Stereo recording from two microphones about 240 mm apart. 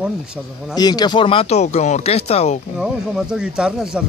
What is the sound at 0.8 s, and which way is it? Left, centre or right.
Speech, centre.